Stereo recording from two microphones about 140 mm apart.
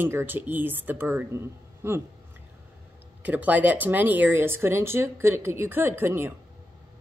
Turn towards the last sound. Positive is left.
turn(degrees=-15)  # may be behind; listen again after turning